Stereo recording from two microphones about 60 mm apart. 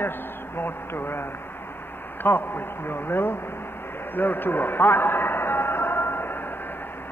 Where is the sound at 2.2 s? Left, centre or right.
Left.